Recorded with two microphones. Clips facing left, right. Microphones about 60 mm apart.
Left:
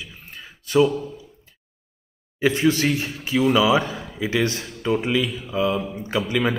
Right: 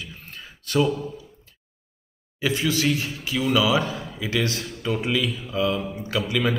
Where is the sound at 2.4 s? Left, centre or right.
Left.